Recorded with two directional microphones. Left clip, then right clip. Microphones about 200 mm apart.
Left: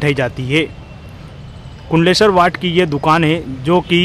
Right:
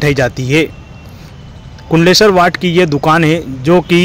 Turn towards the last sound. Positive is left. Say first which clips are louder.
# right 4 dB
turn(degrees=-15)  # may be behind; listen again after turning